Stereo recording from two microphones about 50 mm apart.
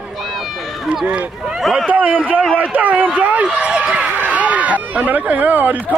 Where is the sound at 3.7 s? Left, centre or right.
Right.